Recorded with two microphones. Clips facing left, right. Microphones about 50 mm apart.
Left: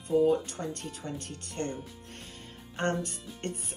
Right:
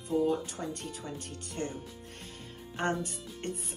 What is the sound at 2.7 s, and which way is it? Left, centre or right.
Speech, left.